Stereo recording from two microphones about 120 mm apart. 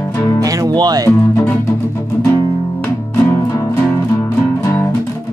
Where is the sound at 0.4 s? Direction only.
35° right (ahead or behind).